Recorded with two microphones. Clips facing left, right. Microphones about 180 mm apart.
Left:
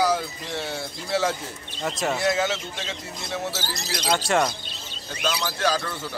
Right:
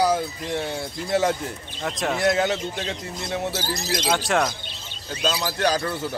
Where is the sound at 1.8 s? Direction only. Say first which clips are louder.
Even; centre (ahead or behind).